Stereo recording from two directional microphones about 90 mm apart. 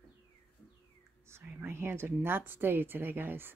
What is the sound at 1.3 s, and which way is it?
A woman's voice, 25° right (ahead or behind).